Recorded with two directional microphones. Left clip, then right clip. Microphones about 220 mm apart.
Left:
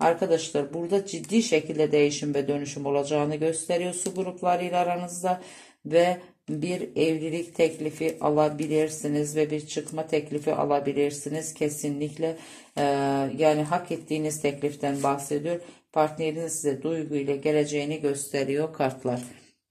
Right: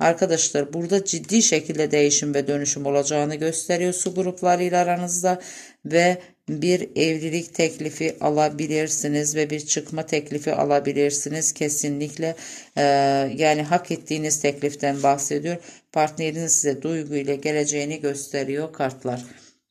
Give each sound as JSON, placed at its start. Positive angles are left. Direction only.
{"t": 0.0, "sound": "speech", "side_deg": -45}